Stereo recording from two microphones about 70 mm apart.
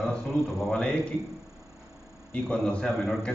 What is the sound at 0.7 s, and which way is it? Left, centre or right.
Speech, centre.